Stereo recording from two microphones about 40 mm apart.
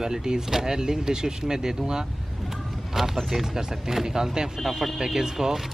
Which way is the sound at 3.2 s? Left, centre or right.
Centre.